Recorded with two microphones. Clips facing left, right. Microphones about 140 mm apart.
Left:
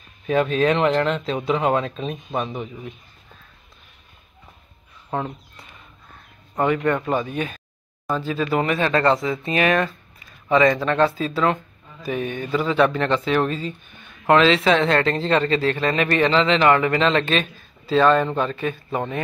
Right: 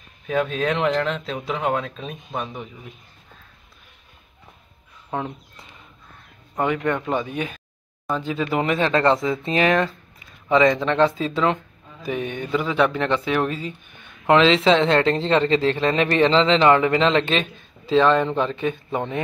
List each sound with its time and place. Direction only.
0.3 s speech: centre (ahead or behind)
6.5 s a man's voice: 10° right (ahead or behind)